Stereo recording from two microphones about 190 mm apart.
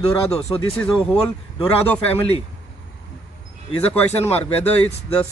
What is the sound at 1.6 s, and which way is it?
Speech, 5° left (ahead or behind).